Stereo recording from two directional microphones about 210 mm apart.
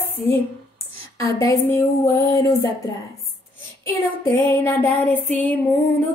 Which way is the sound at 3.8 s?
10° left (ahead or behind).